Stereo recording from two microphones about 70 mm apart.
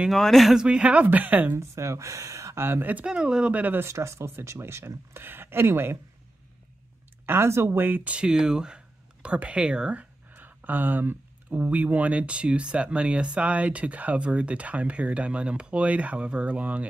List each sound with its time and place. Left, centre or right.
0.1 s speech: centre
0.6 s speech: centre
1.6 s speech: right
2.6 s speech: right
3.1 s speech: centre
3.8 s speech: right
7.2 s speech: right; by 10.0 s centre
10.3 s speech: right